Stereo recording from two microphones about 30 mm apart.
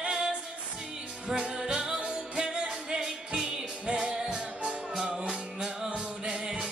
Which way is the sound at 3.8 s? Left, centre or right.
Right.